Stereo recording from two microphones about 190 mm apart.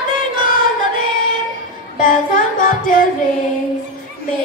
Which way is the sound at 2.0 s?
45° left (ahead or behind).